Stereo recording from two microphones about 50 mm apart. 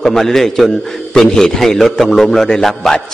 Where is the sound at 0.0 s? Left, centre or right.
Centre.